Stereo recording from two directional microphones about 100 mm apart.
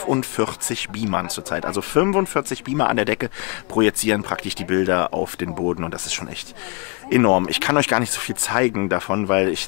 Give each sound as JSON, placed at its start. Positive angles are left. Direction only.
{"t": 0.2, "sound": "speech", "side_deg": 15}
{"t": 7.1, "sound": "speech", "side_deg": 20}